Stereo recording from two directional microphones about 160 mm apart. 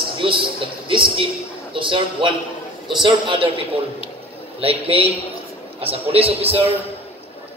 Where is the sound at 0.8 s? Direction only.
35° right (ahead or behind).